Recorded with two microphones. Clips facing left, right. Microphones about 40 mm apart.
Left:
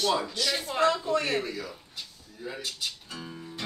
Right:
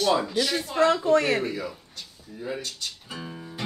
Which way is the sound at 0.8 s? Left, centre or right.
Centre.